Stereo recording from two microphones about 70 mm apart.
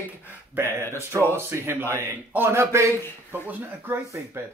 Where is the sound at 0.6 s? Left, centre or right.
Right.